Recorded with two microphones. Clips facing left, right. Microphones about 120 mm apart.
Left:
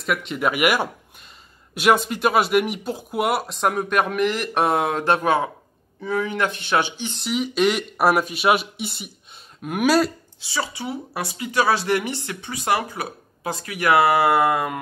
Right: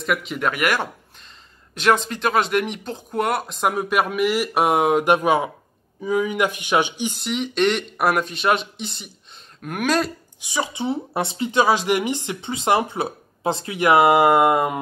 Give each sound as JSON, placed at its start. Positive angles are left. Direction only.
{"t": 0.0, "sound": "speech", "side_deg": 0}
{"t": 0.5, "sound": "speech", "side_deg": 10}
{"t": 7.2, "sound": "speech", "side_deg": 5}
{"t": 10.4, "sound": "a woman's voice", "side_deg": -20}